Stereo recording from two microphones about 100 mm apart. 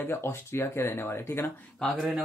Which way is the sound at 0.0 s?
25° left (ahead or behind).